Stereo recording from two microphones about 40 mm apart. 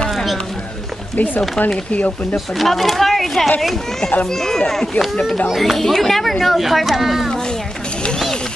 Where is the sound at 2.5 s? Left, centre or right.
Centre.